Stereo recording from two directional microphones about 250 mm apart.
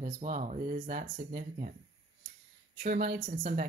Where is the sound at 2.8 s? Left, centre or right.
Right.